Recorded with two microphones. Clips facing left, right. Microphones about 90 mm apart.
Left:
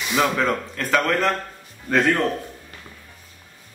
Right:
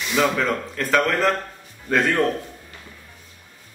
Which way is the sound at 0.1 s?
5° left (ahead or behind).